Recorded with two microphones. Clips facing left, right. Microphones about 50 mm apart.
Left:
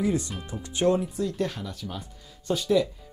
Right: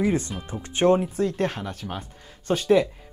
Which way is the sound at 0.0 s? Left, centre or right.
Right.